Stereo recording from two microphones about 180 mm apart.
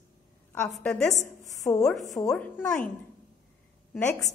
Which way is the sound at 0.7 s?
5° left (ahead or behind).